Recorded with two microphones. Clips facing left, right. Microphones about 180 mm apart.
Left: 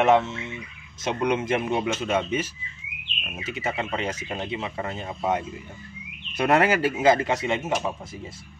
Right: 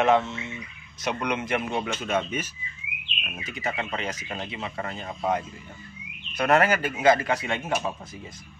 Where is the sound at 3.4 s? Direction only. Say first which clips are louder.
Left 2 dB; 25° left (ahead or behind).